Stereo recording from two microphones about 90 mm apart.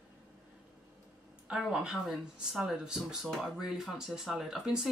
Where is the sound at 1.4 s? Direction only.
5° right (ahead or behind).